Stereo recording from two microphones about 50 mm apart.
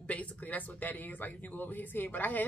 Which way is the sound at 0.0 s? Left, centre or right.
Left.